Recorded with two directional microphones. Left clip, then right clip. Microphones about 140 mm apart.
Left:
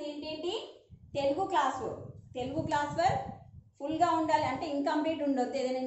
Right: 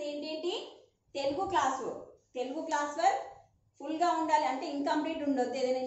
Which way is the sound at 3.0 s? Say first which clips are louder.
Right 4 dB; centre (ahead or behind).